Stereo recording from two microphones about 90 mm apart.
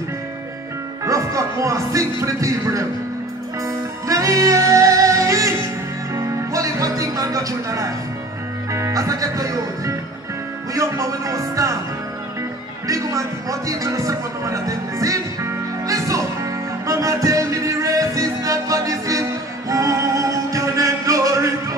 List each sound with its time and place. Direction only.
1.0 s music: 35° right (ahead or behind)
12.8 s speech: 40° right (ahead or behind)
15.9 s music: 35° right (ahead or behind)